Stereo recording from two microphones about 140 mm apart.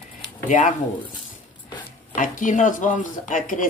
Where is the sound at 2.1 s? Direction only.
70° left (ahead or behind).